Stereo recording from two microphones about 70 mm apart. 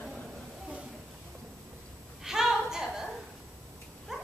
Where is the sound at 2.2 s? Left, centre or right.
Centre.